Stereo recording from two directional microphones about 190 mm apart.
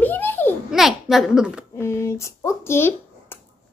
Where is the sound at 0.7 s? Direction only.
Centre (ahead or behind).